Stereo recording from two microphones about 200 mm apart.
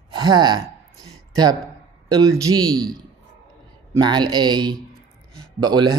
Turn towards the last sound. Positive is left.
turn(degrees=-20)  # may be behind; listen again after turning